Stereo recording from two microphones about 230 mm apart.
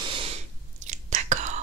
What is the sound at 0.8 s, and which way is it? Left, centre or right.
Whispering, right.